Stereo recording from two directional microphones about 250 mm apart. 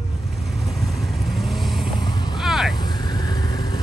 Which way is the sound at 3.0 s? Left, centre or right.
Centre.